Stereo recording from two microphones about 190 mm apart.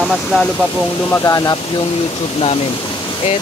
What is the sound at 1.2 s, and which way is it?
Speech, 20° left (ahead or behind).